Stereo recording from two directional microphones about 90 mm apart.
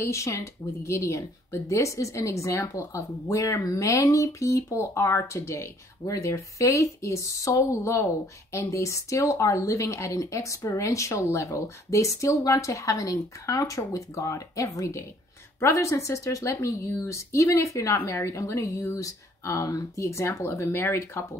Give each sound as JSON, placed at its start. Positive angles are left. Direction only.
{"t": 0.0, "sound": "speech", "side_deg": 35}